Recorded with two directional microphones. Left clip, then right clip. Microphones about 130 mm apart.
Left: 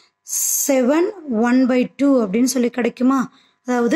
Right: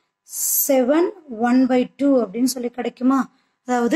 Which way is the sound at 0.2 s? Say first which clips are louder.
Left 4 dB; 75° left (ahead or behind).